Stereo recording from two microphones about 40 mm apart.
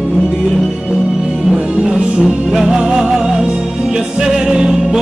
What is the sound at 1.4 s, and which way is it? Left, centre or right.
Music, centre.